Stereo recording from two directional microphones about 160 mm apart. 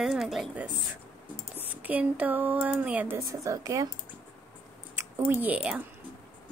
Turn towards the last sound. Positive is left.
turn(degrees=-10)  # may be behind; listen again after turning